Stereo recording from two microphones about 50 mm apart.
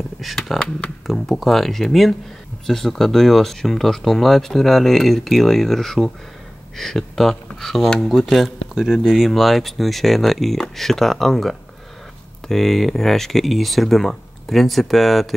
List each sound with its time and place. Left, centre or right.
0.2 s speech: centre
0.6 s speech: centre
1.0 s speech: centre
8.7 s speech: centre